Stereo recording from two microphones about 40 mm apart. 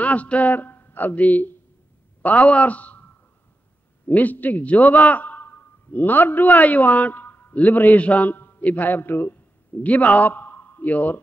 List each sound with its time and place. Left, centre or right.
0.0 s speech: left
2.2 s a man's voice: left
4.1 s a man's voice: left
8.3 s a sound: left
8.6 s a man's voice: left
9.8 s a man's voice: left